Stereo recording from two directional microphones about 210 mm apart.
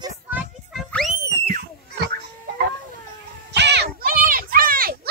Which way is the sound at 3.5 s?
55° right (ahead or behind).